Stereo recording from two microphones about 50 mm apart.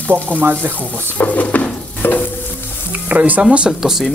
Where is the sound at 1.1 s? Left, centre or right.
Left.